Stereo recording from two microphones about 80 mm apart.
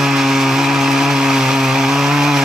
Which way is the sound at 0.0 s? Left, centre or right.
Centre.